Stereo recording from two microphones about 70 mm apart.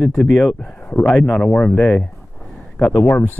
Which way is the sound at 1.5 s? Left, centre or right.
Centre.